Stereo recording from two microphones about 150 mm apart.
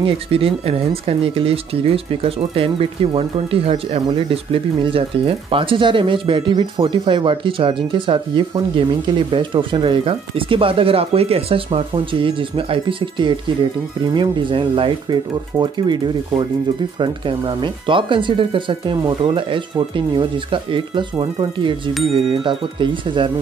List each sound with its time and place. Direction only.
0.0 s speech: 40° right (ahead or behind)